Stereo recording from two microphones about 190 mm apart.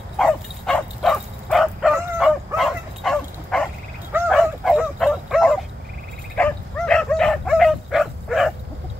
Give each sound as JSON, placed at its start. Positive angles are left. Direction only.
{"t": 0.2, "sound": "bow-wow", "side_deg": 5}
{"t": 4.3, "sound": "dog", "side_deg": 0}